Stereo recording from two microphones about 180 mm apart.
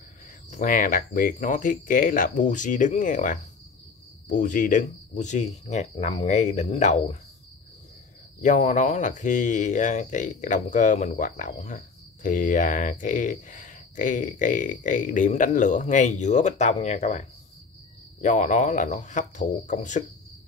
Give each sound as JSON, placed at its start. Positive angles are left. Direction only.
{"t": 0.5, "sound": "speech", "side_deg": 45}
{"t": 8.4, "sound": "speech", "side_deg": 40}